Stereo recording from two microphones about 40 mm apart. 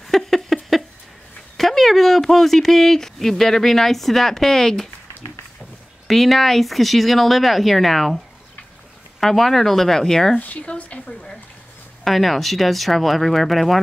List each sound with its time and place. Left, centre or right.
0.0 s a sound: centre
1.6 s speech: centre
6.0 s speech: centre
9.2 s speech: centre
10.4 s speech: left
11.1 s speech: centre
12.0 s speech: centre